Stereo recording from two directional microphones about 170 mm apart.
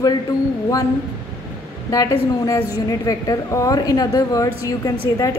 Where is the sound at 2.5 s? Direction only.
20° left (ahead or behind).